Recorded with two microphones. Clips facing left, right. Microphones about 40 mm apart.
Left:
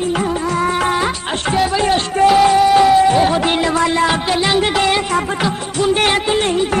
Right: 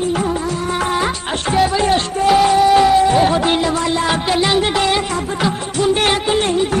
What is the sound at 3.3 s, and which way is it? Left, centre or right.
Music, left.